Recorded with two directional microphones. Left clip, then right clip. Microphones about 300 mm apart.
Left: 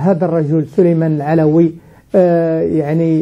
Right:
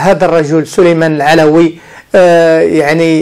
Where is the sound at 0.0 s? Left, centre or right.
Centre.